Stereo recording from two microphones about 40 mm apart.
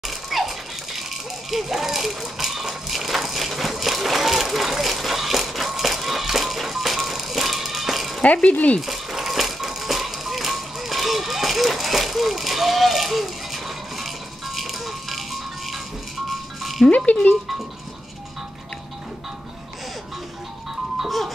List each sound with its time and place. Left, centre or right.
0.1 s a sound: centre
8.2 s speech: left
8.8 s music: centre
16.9 s speech: left
21.0 s music: centre